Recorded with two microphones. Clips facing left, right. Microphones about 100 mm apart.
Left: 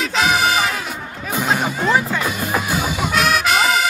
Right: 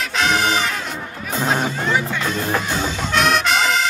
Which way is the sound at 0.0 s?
5° left (ahead or behind).